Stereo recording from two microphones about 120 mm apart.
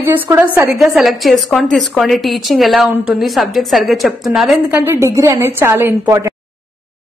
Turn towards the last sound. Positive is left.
turn(degrees=-20)  # may be behind; listen again after turning